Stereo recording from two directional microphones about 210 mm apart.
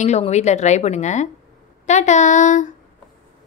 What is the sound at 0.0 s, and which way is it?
A woman's voice, 30° left (ahead or behind).